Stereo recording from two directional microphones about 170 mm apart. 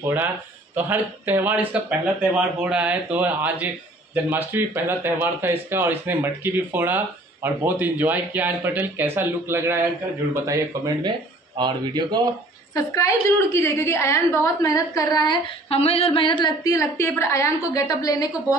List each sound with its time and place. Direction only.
0.0 s speech: 10° right (ahead or behind)
12.7 s a woman's voice: 20° left (ahead or behind)